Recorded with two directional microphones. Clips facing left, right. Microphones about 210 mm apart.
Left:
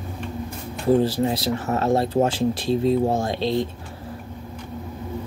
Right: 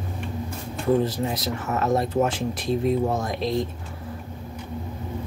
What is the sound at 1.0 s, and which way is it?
Speech, 30° left (ahead or behind).